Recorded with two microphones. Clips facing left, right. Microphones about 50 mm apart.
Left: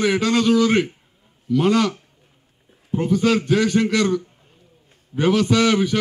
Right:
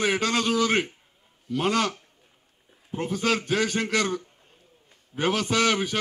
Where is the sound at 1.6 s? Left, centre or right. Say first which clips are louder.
Left 6 dB; centre.